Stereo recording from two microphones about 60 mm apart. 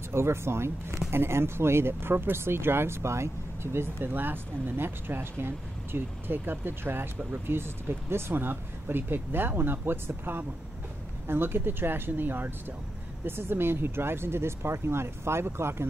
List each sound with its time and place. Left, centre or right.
0.1 s speech: right